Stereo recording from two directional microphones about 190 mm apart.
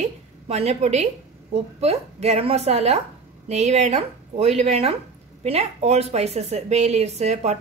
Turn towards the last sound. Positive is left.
turn(degrees=-35)  # may be behind; listen again after turning